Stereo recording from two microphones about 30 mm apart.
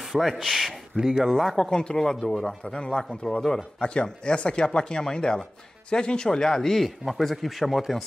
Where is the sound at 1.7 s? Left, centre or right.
Left; by 6.8 s centre.